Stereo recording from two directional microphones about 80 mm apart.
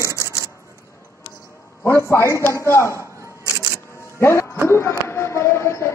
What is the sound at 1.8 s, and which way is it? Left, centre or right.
Speech, left.